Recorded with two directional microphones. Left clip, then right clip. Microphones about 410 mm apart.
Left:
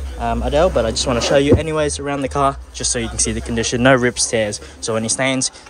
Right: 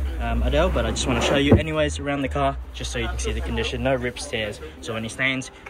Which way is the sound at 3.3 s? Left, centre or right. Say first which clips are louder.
Left 6 dB; left.